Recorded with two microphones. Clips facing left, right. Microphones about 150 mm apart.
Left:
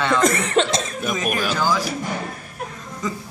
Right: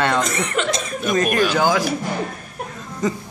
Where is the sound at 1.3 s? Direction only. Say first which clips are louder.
Right 4 dB; centre (ahead or behind).